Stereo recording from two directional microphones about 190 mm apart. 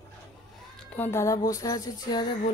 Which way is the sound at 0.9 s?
10° left (ahead or behind).